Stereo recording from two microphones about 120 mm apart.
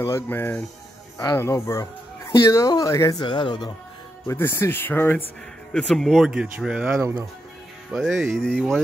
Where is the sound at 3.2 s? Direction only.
40° left (ahead or behind).